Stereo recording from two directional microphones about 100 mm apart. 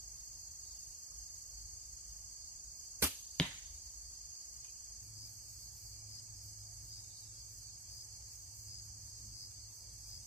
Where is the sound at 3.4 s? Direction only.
10° left (ahead or behind).